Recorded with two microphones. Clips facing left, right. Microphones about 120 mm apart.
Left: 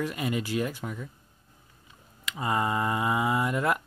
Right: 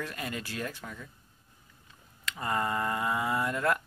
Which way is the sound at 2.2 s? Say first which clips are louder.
Left 3 dB; 15° left (ahead or behind).